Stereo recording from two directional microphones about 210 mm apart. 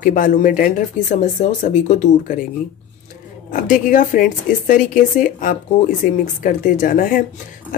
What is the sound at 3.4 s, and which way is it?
Speech, 40° left (ahead or behind).